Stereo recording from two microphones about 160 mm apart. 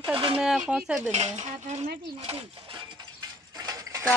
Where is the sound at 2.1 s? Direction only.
35° right (ahead or behind).